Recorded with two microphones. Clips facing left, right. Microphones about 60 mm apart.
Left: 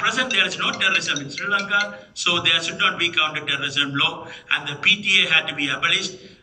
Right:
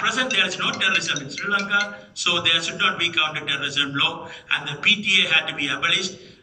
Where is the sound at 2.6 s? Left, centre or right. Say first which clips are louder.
Left 1 dB; left.